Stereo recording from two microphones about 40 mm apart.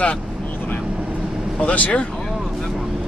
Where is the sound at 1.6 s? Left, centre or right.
Left.